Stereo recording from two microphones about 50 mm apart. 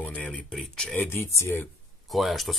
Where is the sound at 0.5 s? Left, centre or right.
Centre.